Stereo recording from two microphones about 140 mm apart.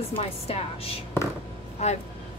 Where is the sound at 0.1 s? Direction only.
45° left (ahead or behind).